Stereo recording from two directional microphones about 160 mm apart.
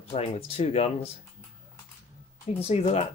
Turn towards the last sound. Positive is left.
turn(degrees=40)  # may be behind; listen again after turning